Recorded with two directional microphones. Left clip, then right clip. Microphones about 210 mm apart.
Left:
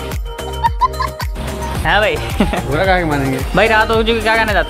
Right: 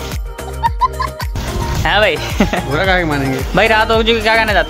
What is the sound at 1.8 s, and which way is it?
Speech, 10° right (ahead or behind).